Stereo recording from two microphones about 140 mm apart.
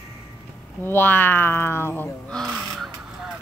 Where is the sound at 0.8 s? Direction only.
15° left (ahead or behind).